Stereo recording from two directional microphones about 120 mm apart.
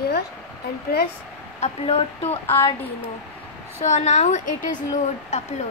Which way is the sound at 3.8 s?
70° left (ahead or behind).